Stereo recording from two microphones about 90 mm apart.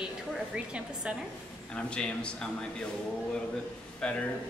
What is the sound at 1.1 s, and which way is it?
Speech, 10° right (ahead or behind).